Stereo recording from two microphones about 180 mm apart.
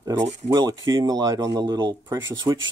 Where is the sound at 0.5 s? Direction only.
20° right (ahead or behind).